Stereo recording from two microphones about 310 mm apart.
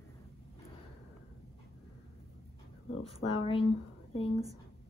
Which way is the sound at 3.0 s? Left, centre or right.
Centre.